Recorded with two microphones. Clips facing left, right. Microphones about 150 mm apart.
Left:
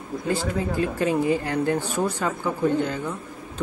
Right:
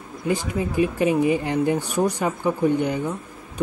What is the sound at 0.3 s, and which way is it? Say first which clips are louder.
Speech: right 1 dB; 15° right (ahead or behind).